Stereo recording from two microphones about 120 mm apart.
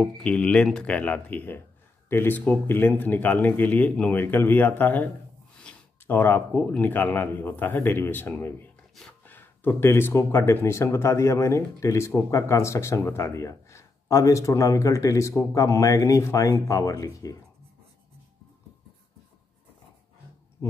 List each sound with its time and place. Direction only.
0.0 s speech: 5° left (ahead or behind); by 17.4 s 30° left (ahead or behind)